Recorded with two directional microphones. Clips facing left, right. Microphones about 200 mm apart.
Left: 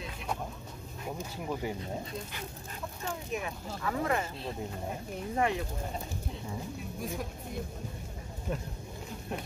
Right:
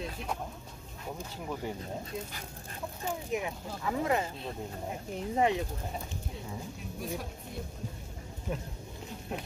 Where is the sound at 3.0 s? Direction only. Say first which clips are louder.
Right 3 dB; 20° right (ahead or behind).